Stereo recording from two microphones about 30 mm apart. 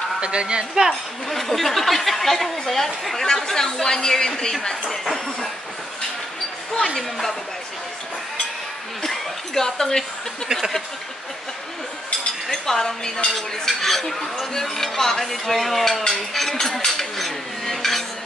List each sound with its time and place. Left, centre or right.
0.2 s speech: right
1.3 s speech: centre
7.0 s a man's voice: centre
9.0 s a sound: centre
12.6 s speech: centre
13.3 s speech: centre
16.2 s a sound: centre